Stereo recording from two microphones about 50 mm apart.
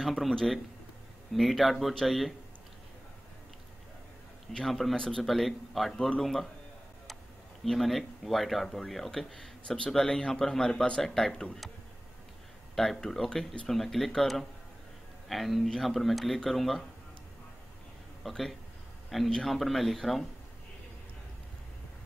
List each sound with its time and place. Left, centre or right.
0.0 s speech: centre
4.6 s speech: centre
4.9 s speech: centre
5.2 s speech: centre
5.9 s speech: centre
7.6 s speech: centre
11.3 s speech: centre
12.7 s speech: centre
15.2 s speech: centre
18.2 s a man's voice: centre